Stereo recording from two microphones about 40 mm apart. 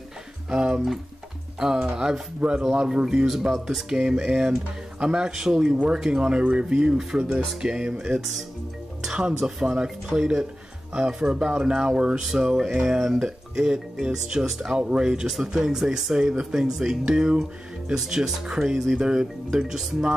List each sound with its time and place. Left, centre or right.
0.5 s speech: right
3.3 s speech: centre
6.2 s speech: right
8.2 s speech: centre; by 12.3 s right
12.3 s speech: centre
14.8 s speech: right